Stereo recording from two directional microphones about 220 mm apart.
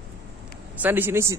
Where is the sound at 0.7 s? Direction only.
10° right (ahead or behind).